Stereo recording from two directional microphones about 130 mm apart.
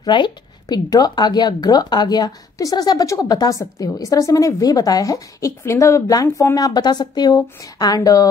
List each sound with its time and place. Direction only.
0.0 s a woman's voice: 35° left (ahead or behind)